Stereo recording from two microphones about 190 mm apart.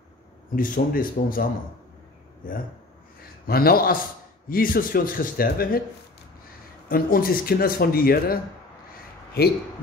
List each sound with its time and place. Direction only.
0.6 s speech: 50° left (ahead or behind)
3.2 s speech: 50° left (ahead or behind)
6.9 s speech: 50° left (ahead or behind)